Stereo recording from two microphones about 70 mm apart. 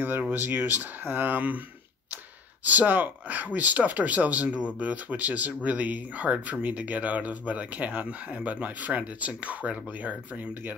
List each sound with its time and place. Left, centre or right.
0.3 s speech: right
2.6 s speech: right